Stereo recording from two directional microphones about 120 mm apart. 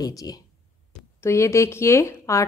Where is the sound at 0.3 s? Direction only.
35° left (ahead or behind).